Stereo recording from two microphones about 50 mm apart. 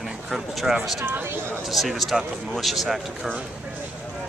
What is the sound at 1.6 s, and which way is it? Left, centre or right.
Speech, centre.